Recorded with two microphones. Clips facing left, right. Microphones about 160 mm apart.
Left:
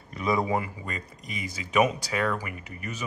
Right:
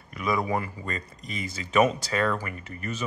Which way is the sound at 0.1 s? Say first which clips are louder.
Left 1 dB; 30° left (ahead or behind).